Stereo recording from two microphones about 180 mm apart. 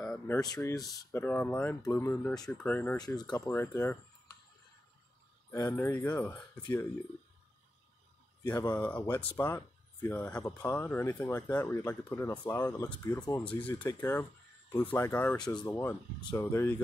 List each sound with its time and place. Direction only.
0.0 s a sound: 5° left (ahead or behind)
0.4 s speech: 20° left (ahead or behind)
3.0 s speech: 20° left (ahead or behind)
5.5 s speech: 15° left (ahead or behind)
8.5 s speech: 10° left (ahead or behind)